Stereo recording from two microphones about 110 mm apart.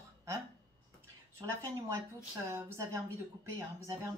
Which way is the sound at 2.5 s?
25° right (ahead or behind).